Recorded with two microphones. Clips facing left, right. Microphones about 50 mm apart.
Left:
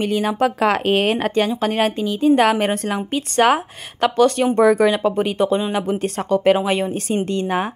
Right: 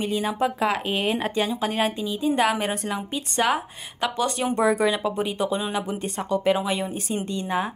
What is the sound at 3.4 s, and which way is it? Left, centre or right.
Speech, left.